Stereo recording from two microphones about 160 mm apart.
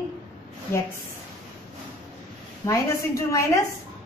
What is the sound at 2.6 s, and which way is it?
Speech, 20° left (ahead or behind).